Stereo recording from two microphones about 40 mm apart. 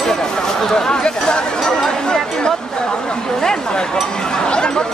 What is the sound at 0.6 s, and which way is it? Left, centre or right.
Speech, centre.